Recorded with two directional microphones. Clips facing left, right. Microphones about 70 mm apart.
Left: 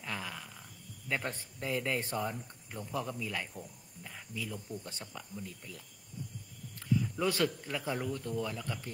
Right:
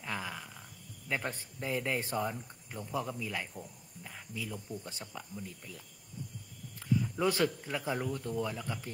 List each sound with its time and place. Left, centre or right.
0.0 s a sound: centre
2.1 s a man's voice: centre
7.2 s a man's voice: right
7.8 s speech: centre